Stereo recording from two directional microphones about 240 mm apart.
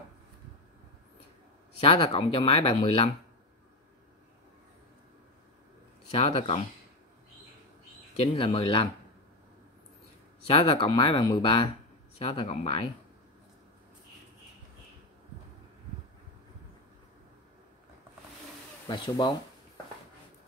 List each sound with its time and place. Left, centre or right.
1.8 s speech: left
6.1 s speech: left
8.2 s speech: left
10.4 s speech: left
18.9 s speech: centre